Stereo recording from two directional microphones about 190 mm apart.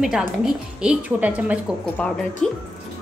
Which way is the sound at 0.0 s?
Centre (ahead or behind).